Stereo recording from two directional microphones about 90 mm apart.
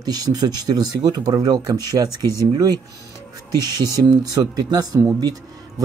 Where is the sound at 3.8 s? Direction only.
45° right (ahead or behind).